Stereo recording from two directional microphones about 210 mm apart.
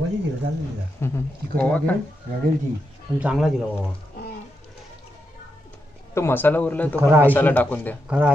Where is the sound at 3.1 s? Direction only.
5° right (ahead or behind).